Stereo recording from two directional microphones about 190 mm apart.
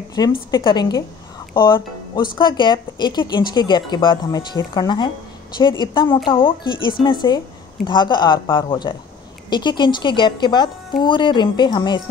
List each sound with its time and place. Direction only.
0.2 s speech: 20° left (ahead or behind)